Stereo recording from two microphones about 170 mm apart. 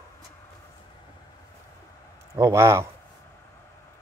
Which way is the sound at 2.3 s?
15° right (ahead or behind).